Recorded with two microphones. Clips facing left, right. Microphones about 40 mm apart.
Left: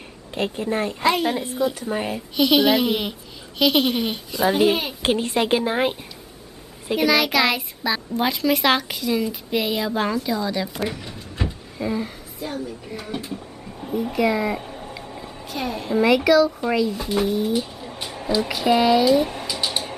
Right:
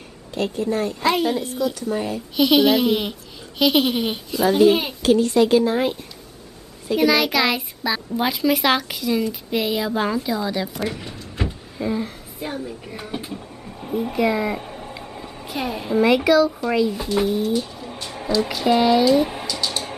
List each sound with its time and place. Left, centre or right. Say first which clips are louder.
0.3 s a woman's voice: right 1 dB; left
1.0 s a woman's voice: even; centre
1.4 s a woman's voice: even; left
2.3 s a child's voice: right 1 dB; centre
4.5 s a woman's voice: right 3 dB; centre
5.0 s a woman's voice: right 6 dB; left
7.0 s a child's voice: right 1 dB; centre
11.0 s a sound: right 1 dB; centre
12.4 s a woman's voice: even; right
13.2 s speech: even; centre
17.4 s speech: right 1 dB; centre
18.4 s a child's voice: right 1 dB; centre